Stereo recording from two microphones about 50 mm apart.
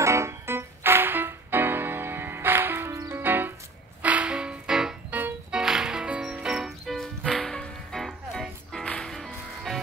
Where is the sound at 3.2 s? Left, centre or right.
Right.